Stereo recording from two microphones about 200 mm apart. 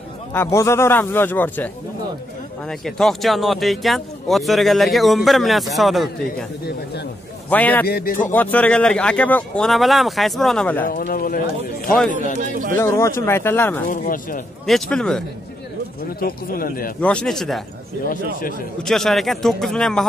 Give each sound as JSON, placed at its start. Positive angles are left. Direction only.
{"t": 0.3, "sound": "speech", "side_deg": 15}
{"t": 2.8, "sound": "a man's voice", "side_deg": 0}
{"t": 7.4, "sound": "speech", "side_deg": 10}
{"t": 7.9, "sound": "speech", "side_deg": 45}
{"t": 8.3, "sound": "a man's voice", "side_deg": 10}
{"t": 10.9, "sound": "speech", "side_deg": 45}
{"t": 12.4, "sound": "speech", "side_deg": -40}
{"t": 12.7, "sound": "speech", "side_deg": 15}
{"t": 13.8, "sound": "speech", "side_deg": 45}
{"t": 14.7, "sound": "a man's voice", "side_deg": 5}
{"t": 16.2, "sound": "speech", "side_deg": 45}
{"t": 17.0, "sound": "a man's voice", "side_deg": 5}
{"t": 18.0, "sound": "speech", "side_deg": 45}
{"t": 18.8, "sound": "a man's voice", "side_deg": 0}